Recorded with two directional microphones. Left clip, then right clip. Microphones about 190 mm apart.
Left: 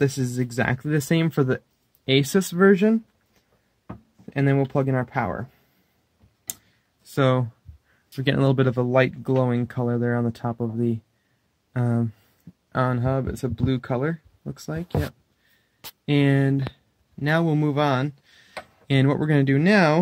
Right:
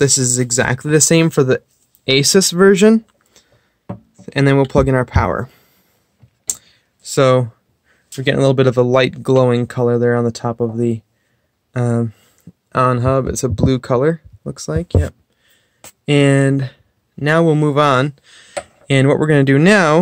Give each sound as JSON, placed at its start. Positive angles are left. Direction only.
{"t": 0.0, "sound": "speech", "side_deg": -30}
{"t": 4.3, "sound": "speech", "side_deg": -45}
{"t": 7.2, "sound": "speech", "side_deg": -25}
{"t": 8.2, "sound": "speech", "side_deg": -10}
{"t": 18.9, "sound": "speech", "side_deg": -25}